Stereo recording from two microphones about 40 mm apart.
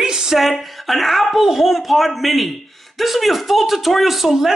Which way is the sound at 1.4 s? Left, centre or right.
Centre.